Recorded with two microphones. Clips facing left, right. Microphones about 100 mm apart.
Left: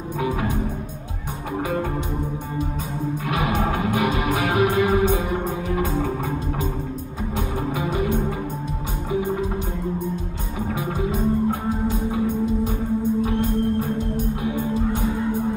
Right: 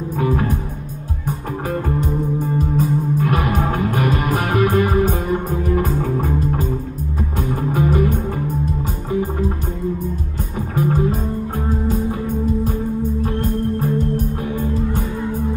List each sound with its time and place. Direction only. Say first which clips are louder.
0.2 s music: right 5 dB; 45° right (ahead or behind)
1.7 s music: right 6 dB; 45° right (ahead or behind)
10.8 s music: right 7 dB; 45° right (ahead or behind)